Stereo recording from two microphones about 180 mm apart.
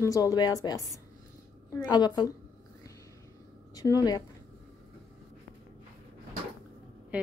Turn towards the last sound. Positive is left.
turn(degrees=-5)  # may be behind; listen again after turning